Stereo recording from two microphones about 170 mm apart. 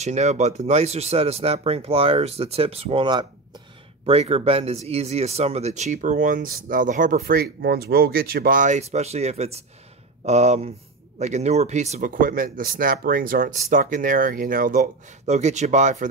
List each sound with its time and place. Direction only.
0.0 s speech: 40° right (ahead or behind)